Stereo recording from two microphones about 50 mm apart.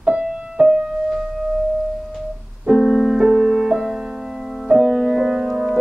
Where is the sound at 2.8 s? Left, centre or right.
Centre.